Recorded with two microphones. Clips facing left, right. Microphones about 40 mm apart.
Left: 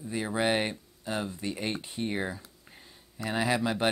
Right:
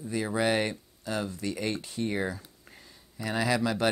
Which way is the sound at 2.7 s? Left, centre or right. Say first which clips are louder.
Right 1 dB; centre.